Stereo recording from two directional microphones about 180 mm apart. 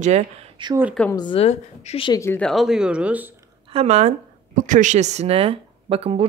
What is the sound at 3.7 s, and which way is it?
Speech, 35° right (ahead or behind).